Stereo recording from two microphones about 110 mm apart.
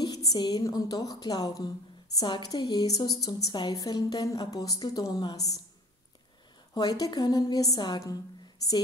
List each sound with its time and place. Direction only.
0.0 s a woman's voice: 35° left (ahead or behind)
6.7 s a woman's voice: 35° left (ahead or behind)